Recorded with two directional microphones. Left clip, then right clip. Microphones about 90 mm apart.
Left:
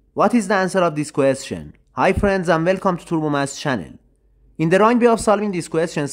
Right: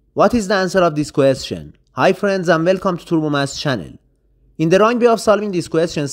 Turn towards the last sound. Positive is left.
turn(degrees=-25)  # may be behind; listen again after turning